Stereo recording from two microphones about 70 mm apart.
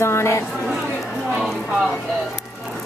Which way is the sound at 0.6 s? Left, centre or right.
Centre.